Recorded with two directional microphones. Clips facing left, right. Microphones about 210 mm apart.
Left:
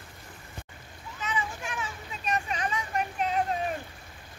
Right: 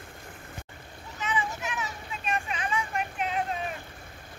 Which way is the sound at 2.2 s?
40° left (ahead or behind).